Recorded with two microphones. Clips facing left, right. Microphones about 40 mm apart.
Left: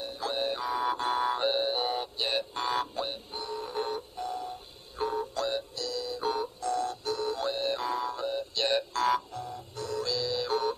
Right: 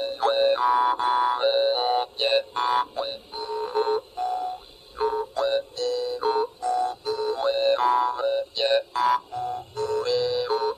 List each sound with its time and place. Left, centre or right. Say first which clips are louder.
0.0 s a sound: right 10 dB; right
0.8 s a sound: right 6 dB; centre; by 2.4 s right
2.5 s frog: right 7 dB; right
3.6 s alarm clock: right 12 dB; right
4.9 s music: right 6 dB; centre
5.8 s music: right 8 dB; right
7.5 s music: right 10 dB; right; by 9.2 s centre
9.3 s music: right 9 dB; right
10.3 s music: right 5 dB; centre